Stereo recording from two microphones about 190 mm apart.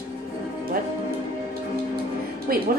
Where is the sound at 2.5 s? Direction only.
50° right (ahead or behind).